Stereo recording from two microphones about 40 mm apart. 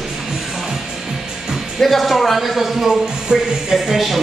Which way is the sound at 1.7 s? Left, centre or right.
Centre.